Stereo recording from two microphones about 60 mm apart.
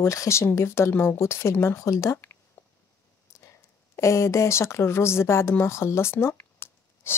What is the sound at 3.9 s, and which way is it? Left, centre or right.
Speech, left.